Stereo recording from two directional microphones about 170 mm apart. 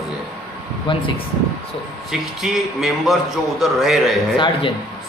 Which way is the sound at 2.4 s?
Centre (ahead or behind).